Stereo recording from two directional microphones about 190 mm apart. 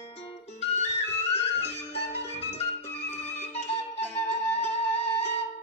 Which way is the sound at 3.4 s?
35° left (ahead or behind).